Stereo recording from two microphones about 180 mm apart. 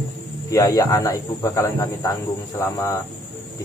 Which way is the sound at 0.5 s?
15° left (ahead or behind).